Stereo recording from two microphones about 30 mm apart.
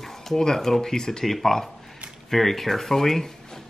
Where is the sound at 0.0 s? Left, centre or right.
Centre.